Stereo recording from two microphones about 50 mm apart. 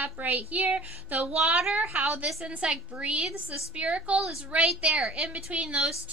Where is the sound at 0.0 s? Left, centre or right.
Right.